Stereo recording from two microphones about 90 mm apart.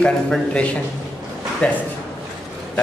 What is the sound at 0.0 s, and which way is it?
Speech, 15° left (ahead or behind).